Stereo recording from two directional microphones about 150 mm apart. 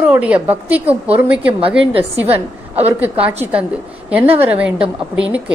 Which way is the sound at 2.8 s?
10° right (ahead or behind).